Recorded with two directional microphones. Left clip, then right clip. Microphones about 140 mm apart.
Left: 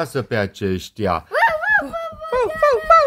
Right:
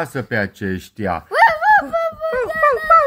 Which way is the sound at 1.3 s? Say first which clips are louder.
Right 6 dB; 70° right (ahead or behind).